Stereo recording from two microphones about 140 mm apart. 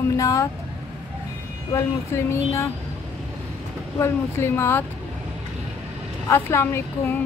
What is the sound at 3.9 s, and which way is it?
Speech, 20° left (ahead or behind).